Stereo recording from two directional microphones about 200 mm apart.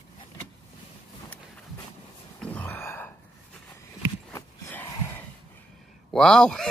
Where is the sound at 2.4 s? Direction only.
5° left (ahead or behind).